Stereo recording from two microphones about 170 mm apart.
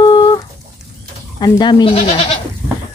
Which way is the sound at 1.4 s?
25° left (ahead or behind).